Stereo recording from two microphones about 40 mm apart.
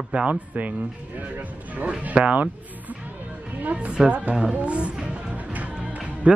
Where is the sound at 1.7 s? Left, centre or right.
Right.